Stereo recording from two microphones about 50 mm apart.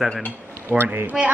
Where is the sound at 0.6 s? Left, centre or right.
Right.